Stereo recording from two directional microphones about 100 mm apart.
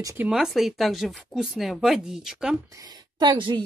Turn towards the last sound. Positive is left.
turn(degrees=-55)  # may be behind; listen again after turning